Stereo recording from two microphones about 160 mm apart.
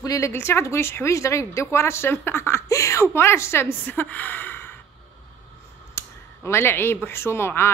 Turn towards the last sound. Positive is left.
turn(degrees=15)  # may be behind; listen again after turning